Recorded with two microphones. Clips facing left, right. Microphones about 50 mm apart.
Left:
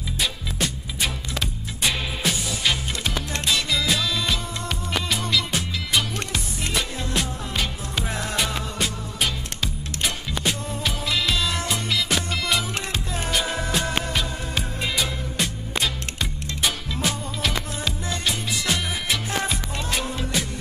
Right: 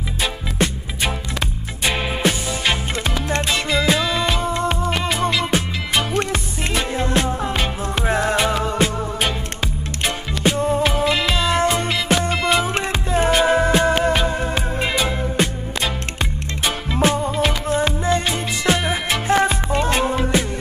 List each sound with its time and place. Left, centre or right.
0.2 s music: right